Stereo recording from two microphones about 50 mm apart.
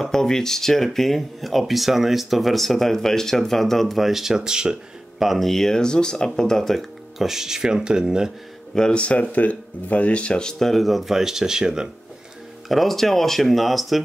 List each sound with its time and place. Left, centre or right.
0.0 s speech: centre
5.2 s speech: centre
7.2 s speech: centre
8.7 s speech: centre
10.6 s speech: centre
12.6 s speech: centre